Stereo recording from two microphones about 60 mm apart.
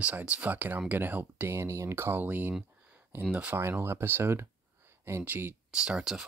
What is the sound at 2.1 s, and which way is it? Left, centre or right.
Speech, right.